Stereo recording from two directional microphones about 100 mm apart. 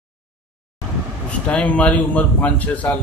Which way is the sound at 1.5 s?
15° left (ahead or behind).